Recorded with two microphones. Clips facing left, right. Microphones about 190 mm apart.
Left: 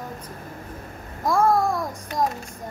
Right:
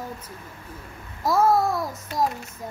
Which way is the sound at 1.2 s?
5° right (ahead or behind).